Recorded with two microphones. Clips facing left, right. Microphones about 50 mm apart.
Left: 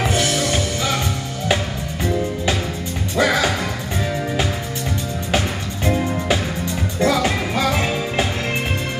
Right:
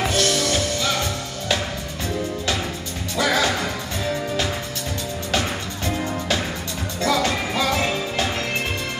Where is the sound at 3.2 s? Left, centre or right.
Left.